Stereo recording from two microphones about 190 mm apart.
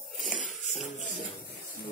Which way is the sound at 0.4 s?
40° left (ahead or behind).